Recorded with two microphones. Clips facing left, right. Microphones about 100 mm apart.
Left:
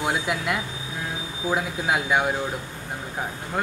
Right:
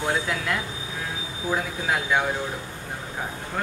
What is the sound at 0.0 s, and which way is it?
Speech, 15° left (ahead or behind).